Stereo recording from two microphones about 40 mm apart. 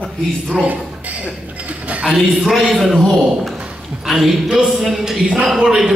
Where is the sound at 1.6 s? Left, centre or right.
Right.